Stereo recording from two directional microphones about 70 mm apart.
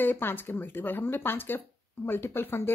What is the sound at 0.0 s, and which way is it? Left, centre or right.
Speech, left.